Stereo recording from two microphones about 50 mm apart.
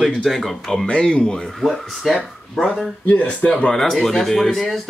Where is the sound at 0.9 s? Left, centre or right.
Centre.